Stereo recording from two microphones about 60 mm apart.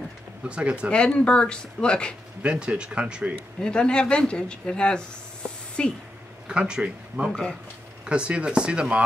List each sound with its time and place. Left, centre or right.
0.4 s speech: centre
0.9 s speech: centre
2.4 s speech: centre
3.6 s speech: centre
6.4 s speech: centre